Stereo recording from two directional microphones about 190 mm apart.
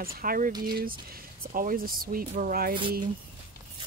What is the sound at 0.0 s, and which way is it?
Speech, 50° right (ahead or behind).